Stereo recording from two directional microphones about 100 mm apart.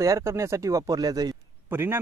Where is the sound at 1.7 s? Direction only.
25° right (ahead or behind).